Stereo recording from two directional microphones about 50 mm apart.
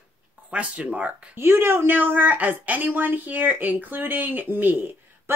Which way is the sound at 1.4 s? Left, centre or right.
Right.